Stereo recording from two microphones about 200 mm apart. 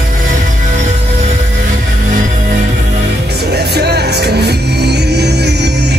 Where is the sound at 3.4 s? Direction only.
55° right (ahead or behind).